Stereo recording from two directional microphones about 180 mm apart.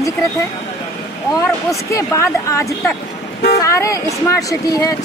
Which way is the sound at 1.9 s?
15° left (ahead or behind).